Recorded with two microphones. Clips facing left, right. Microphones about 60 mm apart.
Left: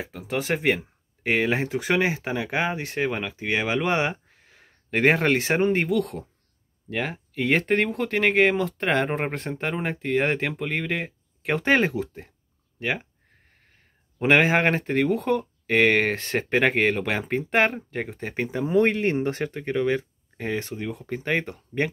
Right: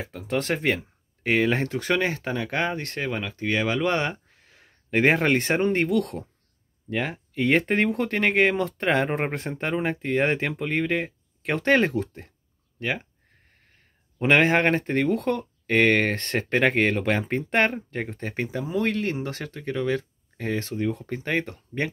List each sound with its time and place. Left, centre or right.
0.2 s speech: centre
0.7 s a sound: left
1.4 s speech: centre
14.1 s speech: centre
18.2 s speech: centre